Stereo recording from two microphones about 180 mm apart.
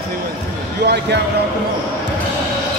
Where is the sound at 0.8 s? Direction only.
75° right (ahead or behind).